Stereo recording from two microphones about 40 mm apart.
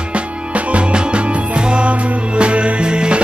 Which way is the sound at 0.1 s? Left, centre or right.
Right.